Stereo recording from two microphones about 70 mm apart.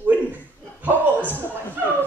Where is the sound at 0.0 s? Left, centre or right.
Right.